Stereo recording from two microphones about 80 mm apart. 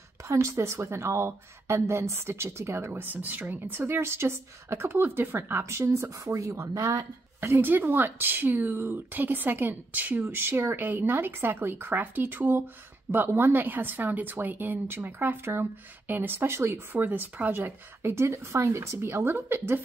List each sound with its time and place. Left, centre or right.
0.3 s a woman's voice: right
7.3 s speech: right